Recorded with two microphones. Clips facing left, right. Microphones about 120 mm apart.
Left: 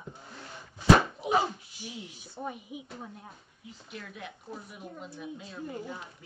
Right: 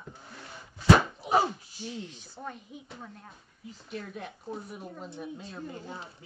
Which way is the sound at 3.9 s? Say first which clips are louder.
Right 4 dB; 40° right (ahead or behind).